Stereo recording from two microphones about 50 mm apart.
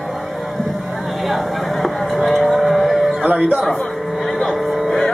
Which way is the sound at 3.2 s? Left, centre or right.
Right.